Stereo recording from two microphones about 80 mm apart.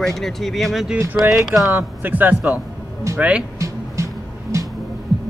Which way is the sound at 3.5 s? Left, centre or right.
Right.